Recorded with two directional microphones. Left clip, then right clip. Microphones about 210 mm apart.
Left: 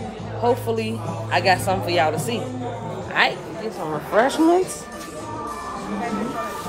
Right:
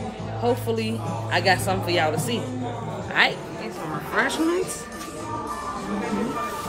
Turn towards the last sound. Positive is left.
turn(degrees=30)  # may be behind; listen again after turning